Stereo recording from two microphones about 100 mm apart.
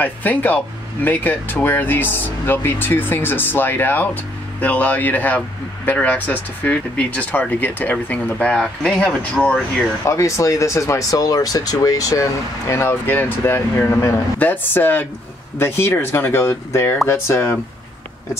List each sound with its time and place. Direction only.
0.0 s speech: 15° left (ahead or behind)
10.0 s speech: 30° left (ahead or behind)